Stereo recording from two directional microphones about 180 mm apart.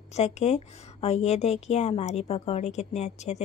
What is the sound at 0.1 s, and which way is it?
Speech, 40° left (ahead or behind).